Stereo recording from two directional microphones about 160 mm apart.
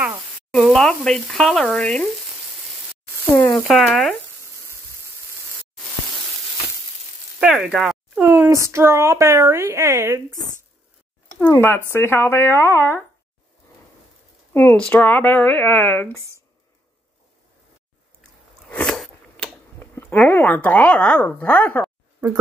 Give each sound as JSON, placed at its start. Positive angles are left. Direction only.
{"t": 0.6, "sound": "speech", "side_deg": 5}
{"t": 3.3, "sound": "speech", "side_deg": 25}
{"t": 3.6, "sound": "speech", "side_deg": 0}
{"t": 7.3, "sound": "speech", "side_deg": -5}
{"t": 11.3, "sound": "speech", "side_deg": 15}
{"t": 14.5, "sound": "speech", "side_deg": 15}
{"t": 18.7, "sound": "biting", "side_deg": 5}
{"t": 20.0, "sound": "speech", "side_deg": 10}